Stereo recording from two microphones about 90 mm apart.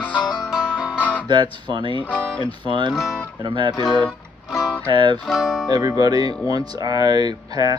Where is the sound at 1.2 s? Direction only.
60° right (ahead or behind).